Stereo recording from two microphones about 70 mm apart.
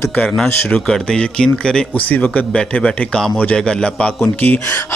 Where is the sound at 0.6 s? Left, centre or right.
Centre.